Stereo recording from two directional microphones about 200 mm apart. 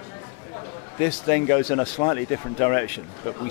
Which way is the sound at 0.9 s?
15° left (ahead or behind).